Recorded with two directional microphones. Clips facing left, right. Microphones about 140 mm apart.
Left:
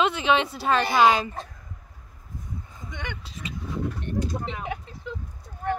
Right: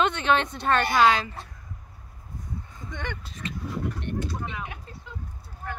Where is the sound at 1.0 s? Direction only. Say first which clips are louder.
Left 2 dB; 15° left (ahead or behind).